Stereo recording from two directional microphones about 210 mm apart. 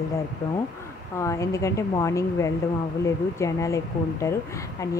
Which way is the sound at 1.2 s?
15° left (ahead or behind).